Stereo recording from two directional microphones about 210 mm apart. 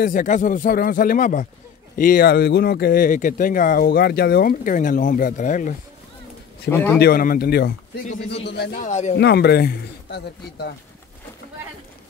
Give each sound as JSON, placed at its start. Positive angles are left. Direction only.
{"t": 0.0, "sound": "speech", "side_deg": 40}
{"t": 6.7, "sound": "a man's voice", "side_deg": 10}
{"t": 7.0, "sound": "a man's voice", "side_deg": 45}
{"t": 8.8, "sound": "speech", "side_deg": 35}
{"t": 9.1, "sound": "a man's voice", "side_deg": 50}